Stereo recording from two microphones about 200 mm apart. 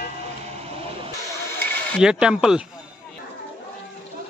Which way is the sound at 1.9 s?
5° right (ahead or behind).